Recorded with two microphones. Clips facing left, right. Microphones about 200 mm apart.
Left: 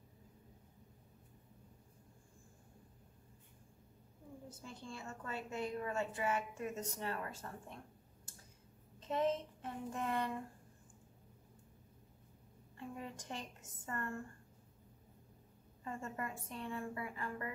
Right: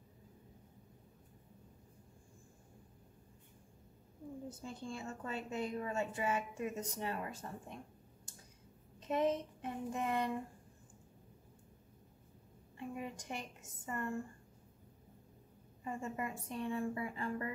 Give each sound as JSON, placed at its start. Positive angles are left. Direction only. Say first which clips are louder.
{"t": 4.5, "sound": "a woman's voice", "louder": "right 3 dB", "side_deg": -20}
{"t": 9.0, "sound": "a woman's voice", "louder": "right 2 dB", "side_deg": -15}
{"t": 12.7, "sound": "a woman's voice", "louder": "right 3 dB", "side_deg": -15}
{"t": 15.8, "sound": "a woman's voice", "louder": "right 3 dB", "side_deg": -15}